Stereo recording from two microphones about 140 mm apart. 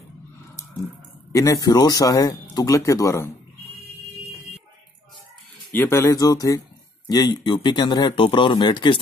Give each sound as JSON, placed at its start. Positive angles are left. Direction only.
{"t": 1.3, "sound": "speech", "side_deg": 25}
{"t": 5.7, "sound": "speech", "side_deg": 15}